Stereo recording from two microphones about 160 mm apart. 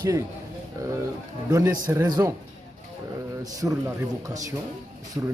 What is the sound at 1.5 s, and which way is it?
Speech, 20° right (ahead or behind).